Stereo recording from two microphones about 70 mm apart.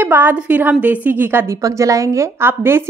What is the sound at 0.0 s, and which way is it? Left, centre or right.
A woman's voice, right.